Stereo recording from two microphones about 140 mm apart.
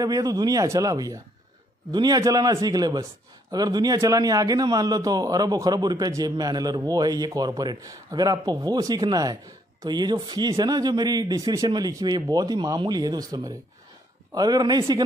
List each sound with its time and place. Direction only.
0.0 s a man's voice: 25° right (ahead or behind)